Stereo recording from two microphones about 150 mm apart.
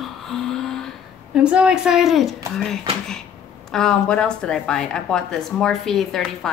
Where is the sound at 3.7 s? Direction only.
5° left (ahead or behind).